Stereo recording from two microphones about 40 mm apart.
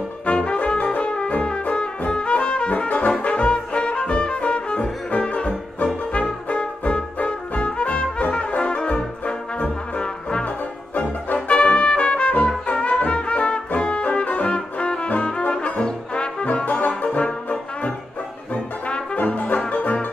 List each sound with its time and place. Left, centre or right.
0.3 s brass instrument: left
2.9 s music: left
6.1 s brass instrument: left
13.7 s music: left
16.6 s brass instrument: left
17.2 s trombone: left
18.5 s brass instrument: left
19.3 s music: left